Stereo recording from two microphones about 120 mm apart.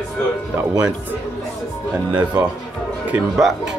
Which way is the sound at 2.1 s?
35° right (ahead or behind).